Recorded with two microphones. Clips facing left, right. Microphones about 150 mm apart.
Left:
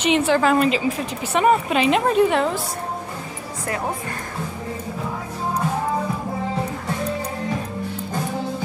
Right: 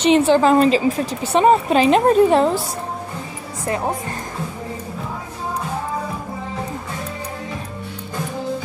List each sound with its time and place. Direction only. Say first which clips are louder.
0.0 s a woman's voice: right 4 dB; 30° right (ahead or behind)